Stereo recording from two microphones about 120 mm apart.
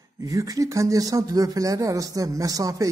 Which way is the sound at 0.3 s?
30° right (ahead or behind).